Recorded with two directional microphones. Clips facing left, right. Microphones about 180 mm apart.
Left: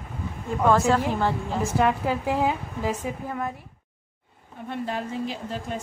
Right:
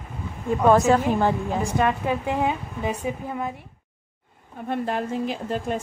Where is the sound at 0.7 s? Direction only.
20° right (ahead or behind).